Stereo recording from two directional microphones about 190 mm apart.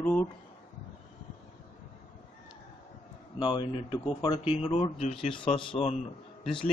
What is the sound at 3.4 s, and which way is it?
Speech, 25° left (ahead or behind).